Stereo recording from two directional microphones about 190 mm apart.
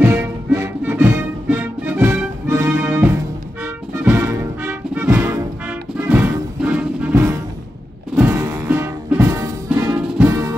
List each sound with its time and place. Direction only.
0.0 s music: 15° right (ahead or behind)